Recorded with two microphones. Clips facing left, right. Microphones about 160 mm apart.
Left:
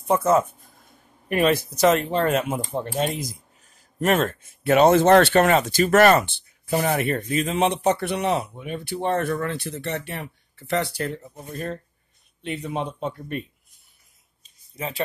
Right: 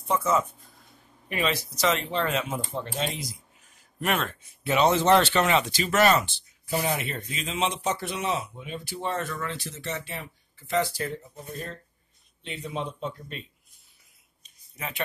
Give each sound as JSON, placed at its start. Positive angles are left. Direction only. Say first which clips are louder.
{"t": 0.0, "sound": "speech", "louder": "left 6 dB", "side_deg": 55}
{"t": 12.4, "sound": "speech", "louder": "left 5 dB", "side_deg": 55}
{"t": 14.4, "sound": "a sound", "louder": "left 6 dB", "side_deg": 30}